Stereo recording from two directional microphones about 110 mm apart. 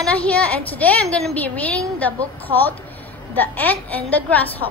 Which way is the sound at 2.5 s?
45° right (ahead or behind).